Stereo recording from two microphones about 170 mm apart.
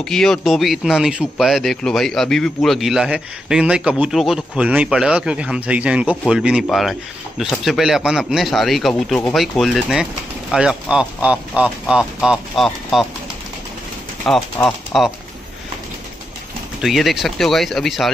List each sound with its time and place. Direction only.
0.0 s speech: 5° left (ahead or behind)
14.2 s speech: 10° left (ahead or behind)
16.8 s speech: centre (ahead or behind)